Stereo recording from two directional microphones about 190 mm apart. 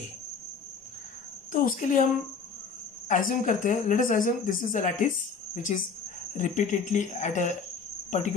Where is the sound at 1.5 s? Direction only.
45° left (ahead or behind).